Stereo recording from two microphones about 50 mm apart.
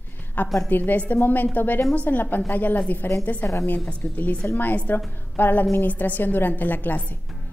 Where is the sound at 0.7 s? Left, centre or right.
Left.